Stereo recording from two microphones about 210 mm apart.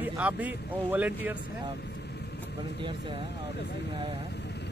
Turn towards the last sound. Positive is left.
turn(degrees=-25)  # may be behind; listen again after turning